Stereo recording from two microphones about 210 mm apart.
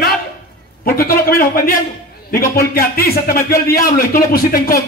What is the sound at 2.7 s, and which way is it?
Speech, 45° left (ahead or behind).